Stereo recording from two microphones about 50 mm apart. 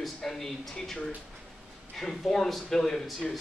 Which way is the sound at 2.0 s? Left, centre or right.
Centre.